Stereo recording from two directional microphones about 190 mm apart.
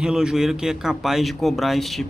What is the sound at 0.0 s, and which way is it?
Speech, 5° right (ahead or behind).